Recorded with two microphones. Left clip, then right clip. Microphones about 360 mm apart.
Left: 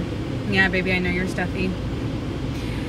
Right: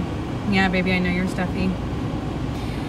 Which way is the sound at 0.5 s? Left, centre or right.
Centre.